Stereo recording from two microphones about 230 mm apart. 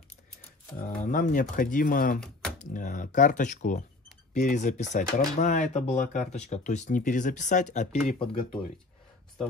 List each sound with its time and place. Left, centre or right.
1.0 s speech: left